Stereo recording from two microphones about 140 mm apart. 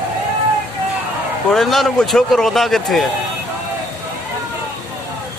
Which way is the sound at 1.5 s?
Centre (ahead or behind).